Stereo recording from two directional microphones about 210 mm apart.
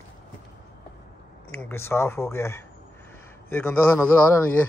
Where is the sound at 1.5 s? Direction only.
10° left (ahead or behind).